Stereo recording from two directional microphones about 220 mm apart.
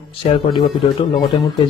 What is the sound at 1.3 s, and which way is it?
Speech, 25° left (ahead or behind).